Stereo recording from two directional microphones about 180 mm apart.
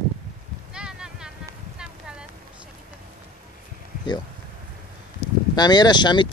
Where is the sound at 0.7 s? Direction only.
5° right (ahead or behind).